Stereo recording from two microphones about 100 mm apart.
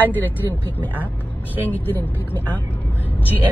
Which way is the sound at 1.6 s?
20° left (ahead or behind).